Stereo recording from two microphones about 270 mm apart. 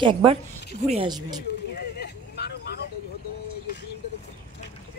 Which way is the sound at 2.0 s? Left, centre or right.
Left.